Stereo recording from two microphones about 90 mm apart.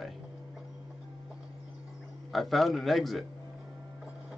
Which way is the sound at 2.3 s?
Centre (ahead or behind).